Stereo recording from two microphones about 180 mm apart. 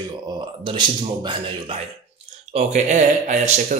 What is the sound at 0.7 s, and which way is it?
Speech, 25° right (ahead or behind).